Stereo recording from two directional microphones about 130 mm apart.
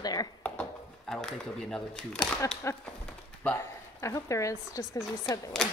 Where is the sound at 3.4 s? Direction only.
20° left (ahead or behind).